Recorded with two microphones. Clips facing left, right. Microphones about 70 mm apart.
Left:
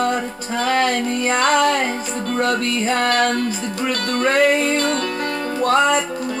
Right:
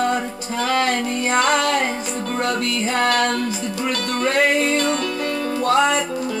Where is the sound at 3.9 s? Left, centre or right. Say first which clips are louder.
Left 3 dB; left.